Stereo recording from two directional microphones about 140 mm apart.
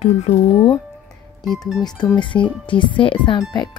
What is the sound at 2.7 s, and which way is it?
Speech, 35° left (ahead or behind).